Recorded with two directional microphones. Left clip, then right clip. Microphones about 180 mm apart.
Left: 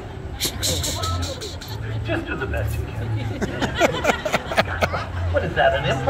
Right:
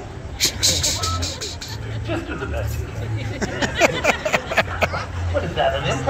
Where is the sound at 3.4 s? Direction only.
15° left (ahead or behind).